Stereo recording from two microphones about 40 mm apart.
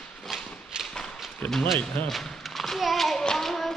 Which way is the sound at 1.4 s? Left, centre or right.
Left.